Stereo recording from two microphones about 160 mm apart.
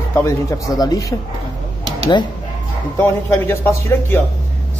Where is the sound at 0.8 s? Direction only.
20° left (ahead or behind).